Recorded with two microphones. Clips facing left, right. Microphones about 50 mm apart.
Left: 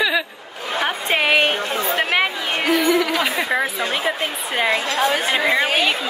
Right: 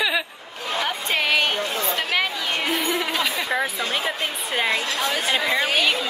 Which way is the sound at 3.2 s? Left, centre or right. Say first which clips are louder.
Left 3 dB; left.